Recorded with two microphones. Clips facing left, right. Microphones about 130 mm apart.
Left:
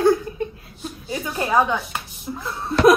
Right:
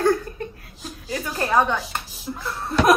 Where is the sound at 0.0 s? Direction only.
15° left (ahead or behind).